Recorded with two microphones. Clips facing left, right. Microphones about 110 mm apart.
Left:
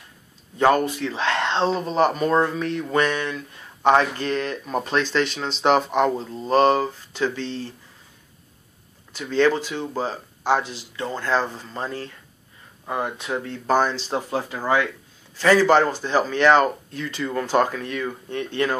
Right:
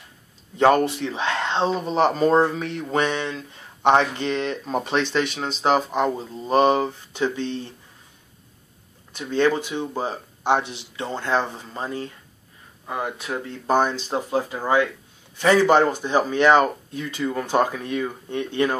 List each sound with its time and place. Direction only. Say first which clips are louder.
0.6 s speech: right 1 dB; 25° right (ahead or behind)
2.0 s speech: right 2 dB; 25° right (ahead or behind)
9.2 s speech: left 1 dB; 15° right (ahead or behind)
13.3 s speech: left 3 dB; 5° left (ahead or behind)
13.7 s speech: even; 20° right (ahead or behind)